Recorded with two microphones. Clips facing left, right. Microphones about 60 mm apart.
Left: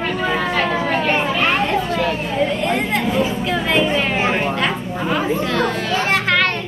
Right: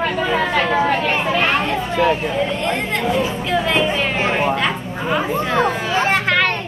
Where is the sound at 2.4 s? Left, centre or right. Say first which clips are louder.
Left 1 dB; centre.